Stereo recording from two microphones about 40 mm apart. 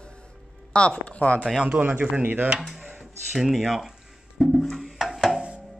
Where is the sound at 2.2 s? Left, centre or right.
Right.